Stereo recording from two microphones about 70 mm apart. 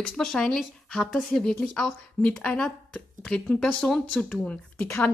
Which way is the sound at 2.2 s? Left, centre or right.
Centre.